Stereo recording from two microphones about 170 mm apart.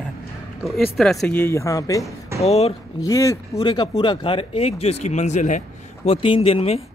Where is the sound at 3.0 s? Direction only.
20° left (ahead or behind); by 6.8 s 35° left (ahead or behind).